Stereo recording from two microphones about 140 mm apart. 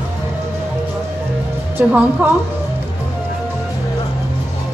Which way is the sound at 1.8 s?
10° right (ahead or behind).